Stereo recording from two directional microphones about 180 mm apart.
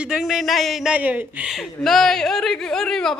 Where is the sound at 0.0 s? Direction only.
5° right (ahead or behind).